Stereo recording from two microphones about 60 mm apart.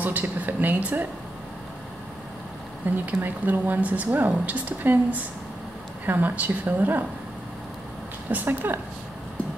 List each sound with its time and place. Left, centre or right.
0.0 s speech: right
3.1 s speech: right
8.3 s speech: right